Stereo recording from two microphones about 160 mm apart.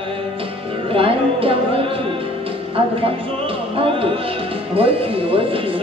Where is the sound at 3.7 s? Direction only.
35° right (ahead or behind).